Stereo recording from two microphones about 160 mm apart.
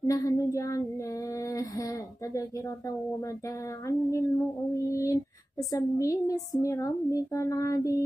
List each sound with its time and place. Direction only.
0.0 s child singing: 20° left (ahead or behind)
1.5 s a sound: 20° left (ahead or behind)
3.8 s speech: 20° left (ahead or behind)